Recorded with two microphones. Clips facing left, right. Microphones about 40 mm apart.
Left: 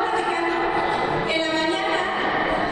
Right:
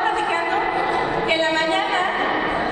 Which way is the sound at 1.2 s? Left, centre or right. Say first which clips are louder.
Right 3 dB; right.